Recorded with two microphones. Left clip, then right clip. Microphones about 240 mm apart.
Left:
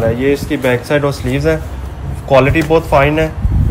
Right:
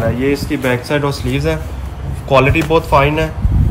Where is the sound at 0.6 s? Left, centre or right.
Right.